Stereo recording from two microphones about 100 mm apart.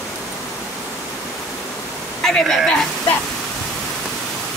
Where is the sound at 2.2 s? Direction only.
5° left (ahead or behind).